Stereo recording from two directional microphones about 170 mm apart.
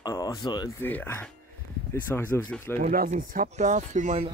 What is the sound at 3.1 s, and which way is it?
Speech, 45° right (ahead or behind).